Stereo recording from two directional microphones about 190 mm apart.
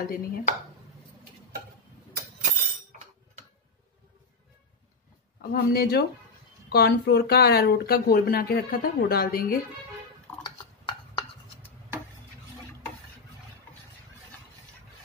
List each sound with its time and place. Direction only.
0.0 s speech: 45° left (ahead or behind)
5.4 s speech: 55° left (ahead or behind)
10.4 s a sound: 25° left (ahead or behind)